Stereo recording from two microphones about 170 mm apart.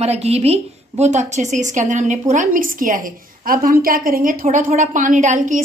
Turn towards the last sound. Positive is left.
turn(degrees=-45)  # may be behind; listen again after turning